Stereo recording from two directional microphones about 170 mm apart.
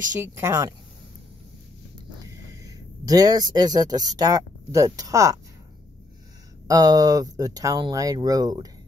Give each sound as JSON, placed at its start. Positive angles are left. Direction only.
{"t": 0.2, "sound": "speech", "side_deg": -15}
{"t": 2.6, "sound": "speech", "side_deg": -20}
{"t": 6.7, "sound": "speech", "side_deg": -20}